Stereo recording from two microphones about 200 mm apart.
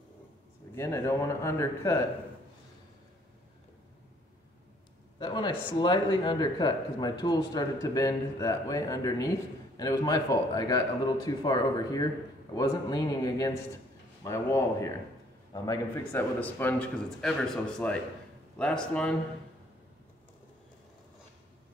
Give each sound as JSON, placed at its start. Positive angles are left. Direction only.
{"t": 0.7, "sound": "a man's voice", "side_deg": 15}
{"t": 5.2, "sound": "a man's voice", "side_deg": 20}